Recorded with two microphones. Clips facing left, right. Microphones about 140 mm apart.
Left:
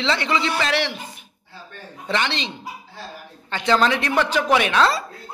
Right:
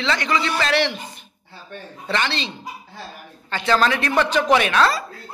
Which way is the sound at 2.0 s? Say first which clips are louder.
Even; 20° left (ahead or behind).